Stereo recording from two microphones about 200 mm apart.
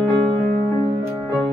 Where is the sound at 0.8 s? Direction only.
15° right (ahead or behind).